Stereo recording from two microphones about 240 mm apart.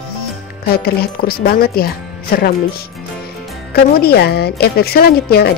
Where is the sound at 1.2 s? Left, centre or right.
Left.